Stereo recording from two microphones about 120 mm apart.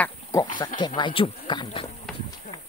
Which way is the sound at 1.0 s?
45° left (ahead or behind).